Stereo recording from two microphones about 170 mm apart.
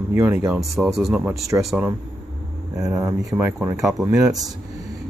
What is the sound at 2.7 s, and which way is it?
Speech, 20° right (ahead or behind).